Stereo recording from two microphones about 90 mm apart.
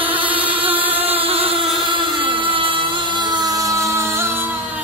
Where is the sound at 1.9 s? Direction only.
70° right (ahead or behind); by 4.4 s 30° right (ahead or behind).